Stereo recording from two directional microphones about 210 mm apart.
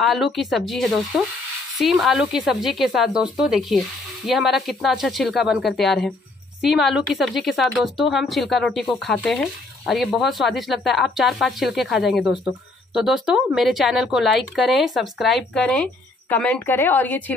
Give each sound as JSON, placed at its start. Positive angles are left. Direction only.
{"t": 0.0, "sound": "a woman's voice", "side_deg": 0}